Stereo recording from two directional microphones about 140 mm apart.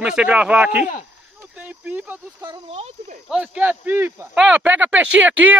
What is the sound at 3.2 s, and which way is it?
Speech, 5° right (ahead or behind).